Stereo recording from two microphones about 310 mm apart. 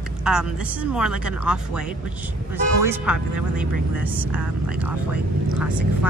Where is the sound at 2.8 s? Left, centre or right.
Centre.